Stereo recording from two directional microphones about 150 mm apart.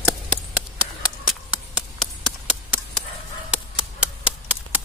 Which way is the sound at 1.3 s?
Centre (ahead or behind).